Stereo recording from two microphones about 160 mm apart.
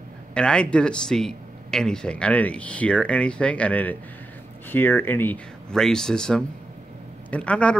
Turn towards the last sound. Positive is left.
turn(degrees=5)  # may be behind; listen again after turning